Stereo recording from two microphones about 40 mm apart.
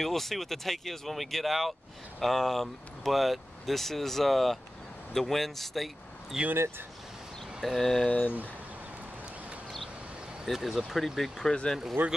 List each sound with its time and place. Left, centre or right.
0.0 s speech: centre
6.3 s speech: centre
7.6 s speech: centre
8.1 s speech: left
10.4 s speech: centre
12.0 s speech: right